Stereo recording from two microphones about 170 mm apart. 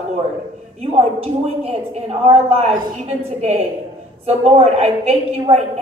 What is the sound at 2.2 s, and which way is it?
Speech, 35° right (ahead or behind).